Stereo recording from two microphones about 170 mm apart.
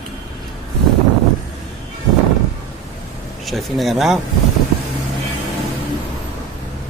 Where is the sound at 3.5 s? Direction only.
Centre (ahead or behind).